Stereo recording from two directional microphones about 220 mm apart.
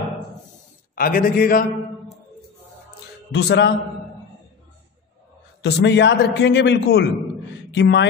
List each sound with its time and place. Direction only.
0.9 s a man's voice: 40° left (ahead or behind)
3.3 s a man's voice: 50° left (ahead or behind)
5.6 s a man's voice: 50° left (ahead or behind)